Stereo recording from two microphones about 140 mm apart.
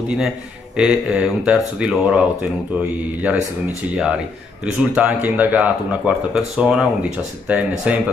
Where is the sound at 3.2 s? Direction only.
10° right (ahead or behind).